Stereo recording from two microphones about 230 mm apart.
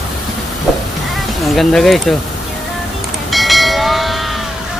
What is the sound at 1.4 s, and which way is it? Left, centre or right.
Speech, centre.